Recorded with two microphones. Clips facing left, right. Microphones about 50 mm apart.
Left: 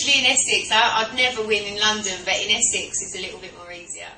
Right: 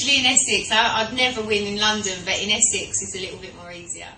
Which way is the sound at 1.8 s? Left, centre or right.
Centre.